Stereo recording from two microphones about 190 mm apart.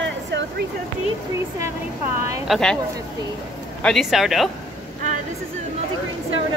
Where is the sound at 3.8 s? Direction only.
Centre (ahead or behind).